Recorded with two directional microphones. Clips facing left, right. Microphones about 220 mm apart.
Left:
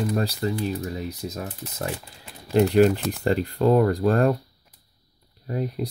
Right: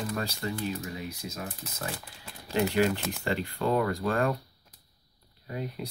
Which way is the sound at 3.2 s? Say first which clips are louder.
Left 9 dB; 40° left (ahead or behind).